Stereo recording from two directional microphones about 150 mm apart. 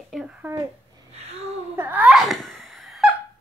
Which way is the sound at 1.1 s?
45° right (ahead or behind).